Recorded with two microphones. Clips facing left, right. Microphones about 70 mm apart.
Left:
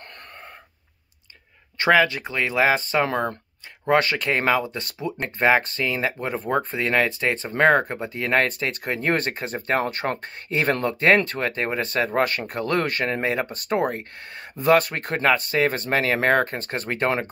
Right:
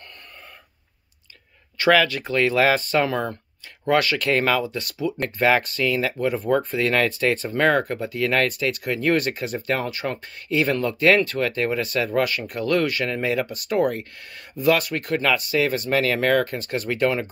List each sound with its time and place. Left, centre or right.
1.8 s speech: left
4.6 s speech: left